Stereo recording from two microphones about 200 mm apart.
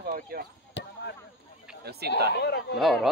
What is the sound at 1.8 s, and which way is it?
Speech, 55° right (ahead or behind).